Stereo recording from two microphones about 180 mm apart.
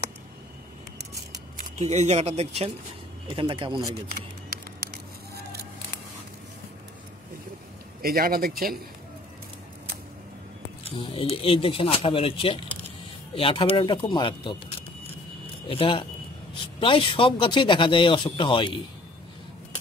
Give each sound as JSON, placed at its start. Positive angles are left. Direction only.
{"t": 1.6, "sound": "speech", "side_deg": -40}
{"t": 8.0, "sound": "a man's voice", "side_deg": -55}
{"t": 10.8, "sound": "a sound", "side_deg": 30}
{"t": 11.4, "sound": "speech", "side_deg": 30}
{"t": 15.7, "sound": "speech", "side_deg": 30}